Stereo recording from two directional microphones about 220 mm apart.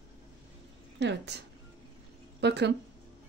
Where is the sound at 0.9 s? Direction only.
50° right (ahead or behind).